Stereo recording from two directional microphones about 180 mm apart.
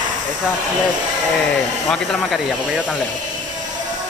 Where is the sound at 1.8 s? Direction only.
Centre (ahead or behind).